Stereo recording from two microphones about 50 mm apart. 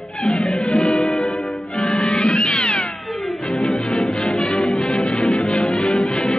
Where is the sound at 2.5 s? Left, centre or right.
Left.